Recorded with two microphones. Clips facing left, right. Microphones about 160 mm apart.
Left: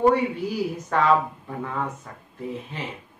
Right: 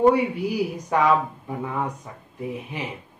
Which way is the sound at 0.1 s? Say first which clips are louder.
Right 1 dB; 15° right (ahead or behind).